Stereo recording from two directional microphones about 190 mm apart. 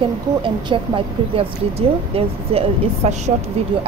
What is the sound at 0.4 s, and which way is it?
Speech, 25° right (ahead or behind).